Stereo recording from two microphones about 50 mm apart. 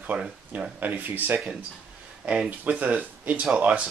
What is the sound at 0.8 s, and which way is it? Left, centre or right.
Speech, right.